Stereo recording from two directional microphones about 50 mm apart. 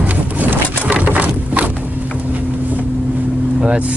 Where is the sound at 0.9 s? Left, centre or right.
Right.